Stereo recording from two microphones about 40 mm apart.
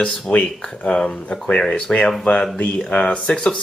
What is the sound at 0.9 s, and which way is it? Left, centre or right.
Speech, left.